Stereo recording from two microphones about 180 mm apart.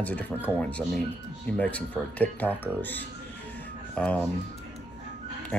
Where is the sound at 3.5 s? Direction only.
5° left (ahead or behind).